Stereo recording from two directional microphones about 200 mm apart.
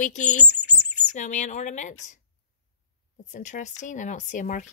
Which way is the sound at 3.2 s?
40° left (ahead or behind).